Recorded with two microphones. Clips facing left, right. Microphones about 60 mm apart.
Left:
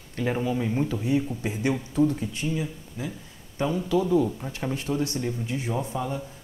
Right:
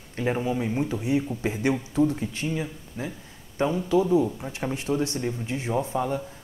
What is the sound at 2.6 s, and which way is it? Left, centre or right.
Speech, right.